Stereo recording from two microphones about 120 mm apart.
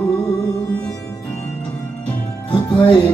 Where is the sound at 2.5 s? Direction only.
35° left (ahead or behind).